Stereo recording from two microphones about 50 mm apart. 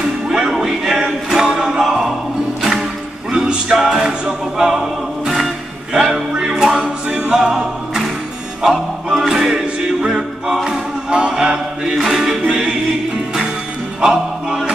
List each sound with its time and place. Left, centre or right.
0.3 s music: centre
3.3 s music: centre
4.6 s choir: centre
5.9 s music: centre
7.1 s a capella: centre
8.6 s music: centre
14.0 s music: centre